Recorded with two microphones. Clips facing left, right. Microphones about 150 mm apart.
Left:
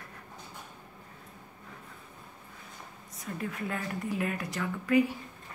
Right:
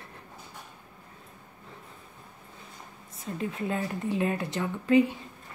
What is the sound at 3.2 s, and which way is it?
Speech, 25° right (ahead or behind).